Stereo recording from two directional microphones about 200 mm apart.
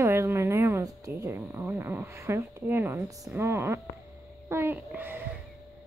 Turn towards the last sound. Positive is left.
turn(degrees=-10)  # may be behind; listen again after turning